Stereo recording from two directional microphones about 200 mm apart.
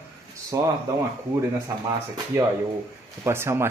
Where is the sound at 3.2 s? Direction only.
10° right (ahead or behind).